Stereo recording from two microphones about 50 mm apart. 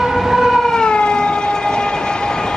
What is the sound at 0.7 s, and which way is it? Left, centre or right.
Train, centre.